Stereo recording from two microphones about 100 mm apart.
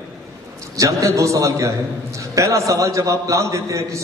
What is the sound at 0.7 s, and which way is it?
A man's voice, 30° right (ahead or behind).